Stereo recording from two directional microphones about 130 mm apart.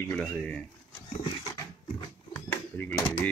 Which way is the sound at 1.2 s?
30° left (ahead or behind).